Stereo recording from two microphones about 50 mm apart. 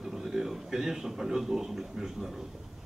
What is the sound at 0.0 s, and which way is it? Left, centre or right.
A man's voice, centre.